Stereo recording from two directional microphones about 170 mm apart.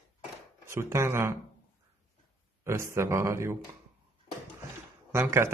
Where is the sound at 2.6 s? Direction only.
15° right (ahead or behind).